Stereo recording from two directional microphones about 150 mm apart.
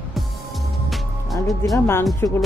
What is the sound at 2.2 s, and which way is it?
Speech, 20° left (ahead or behind).